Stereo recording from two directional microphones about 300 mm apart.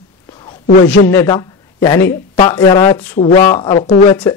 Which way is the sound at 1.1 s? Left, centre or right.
Centre.